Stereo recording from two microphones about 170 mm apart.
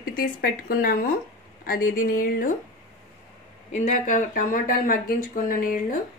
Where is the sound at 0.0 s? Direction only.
60° left (ahead or behind).